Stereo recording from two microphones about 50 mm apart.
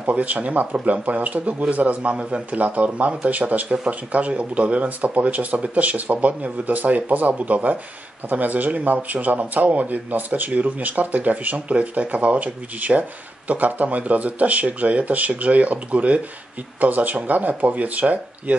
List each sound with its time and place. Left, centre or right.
0.0 s speech: right